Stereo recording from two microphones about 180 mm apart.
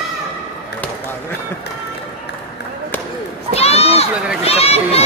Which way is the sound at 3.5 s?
35° left (ahead or behind).